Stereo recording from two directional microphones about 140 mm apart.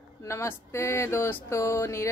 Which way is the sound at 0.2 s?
20° left (ahead or behind).